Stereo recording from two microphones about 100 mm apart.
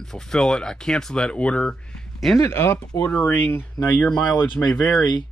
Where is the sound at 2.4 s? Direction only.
25° left (ahead or behind).